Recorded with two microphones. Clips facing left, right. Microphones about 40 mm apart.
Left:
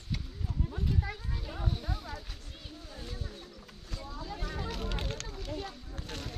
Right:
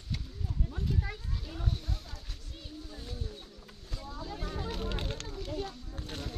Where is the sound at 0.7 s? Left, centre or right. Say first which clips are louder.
Left 1 dB; centre.